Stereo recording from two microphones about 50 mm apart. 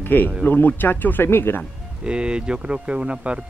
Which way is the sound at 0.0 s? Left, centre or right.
Left.